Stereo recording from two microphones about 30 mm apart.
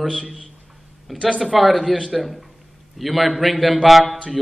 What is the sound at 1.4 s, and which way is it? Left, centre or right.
A man's voice, centre.